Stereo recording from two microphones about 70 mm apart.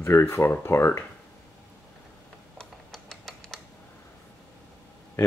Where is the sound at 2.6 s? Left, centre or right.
Centre.